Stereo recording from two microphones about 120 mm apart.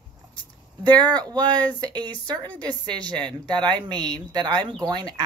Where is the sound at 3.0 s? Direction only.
35° right (ahead or behind).